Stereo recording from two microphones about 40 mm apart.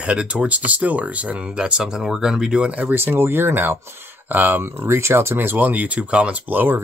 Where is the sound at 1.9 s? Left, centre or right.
Centre.